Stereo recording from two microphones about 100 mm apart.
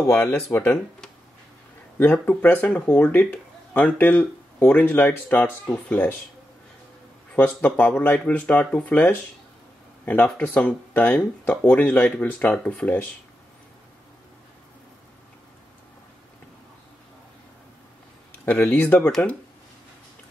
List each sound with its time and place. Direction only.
0.3 s speech: 25° left (ahead or behind)
2.2 s speech: 15° left (ahead or behind)
7.3 s speech: 20° left (ahead or behind)
11.1 s speech: 10° left (ahead or behind)
18.4 s speech: 20° left (ahead or behind)
18.9 s speech: 10° left (ahead or behind)